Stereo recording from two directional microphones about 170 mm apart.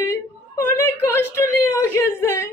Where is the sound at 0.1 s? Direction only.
15° left (ahead or behind).